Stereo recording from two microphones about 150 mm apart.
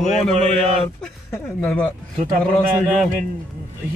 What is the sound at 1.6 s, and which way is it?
Speech, 5° left (ahead or behind).